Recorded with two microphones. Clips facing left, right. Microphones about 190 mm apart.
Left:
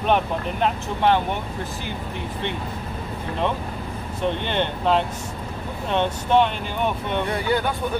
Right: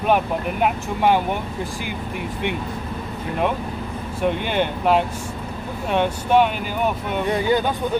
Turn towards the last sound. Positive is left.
turn(degrees=-20)  # may be behind; listen again after turning